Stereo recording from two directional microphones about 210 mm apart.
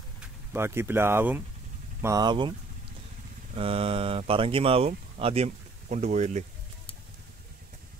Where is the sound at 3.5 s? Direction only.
25° right (ahead or behind).